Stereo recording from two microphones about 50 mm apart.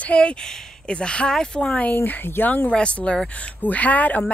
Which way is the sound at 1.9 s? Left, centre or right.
Left.